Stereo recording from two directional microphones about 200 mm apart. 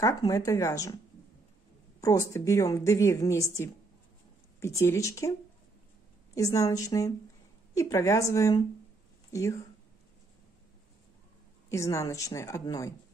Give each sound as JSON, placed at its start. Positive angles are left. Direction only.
{"t": 0.0, "sound": "a woman's voice", "side_deg": 15}
{"t": 2.0, "sound": "a woman's voice", "side_deg": 15}
{"t": 6.3, "sound": "a woman's voice", "side_deg": 15}
{"t": 11.7, "sound": "a woman's voice", "side_deg": 15}